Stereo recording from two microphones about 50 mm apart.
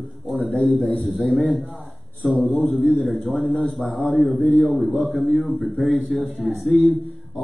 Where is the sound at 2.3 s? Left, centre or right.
Left.